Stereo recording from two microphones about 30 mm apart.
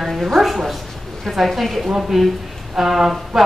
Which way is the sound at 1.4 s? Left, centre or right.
Centre.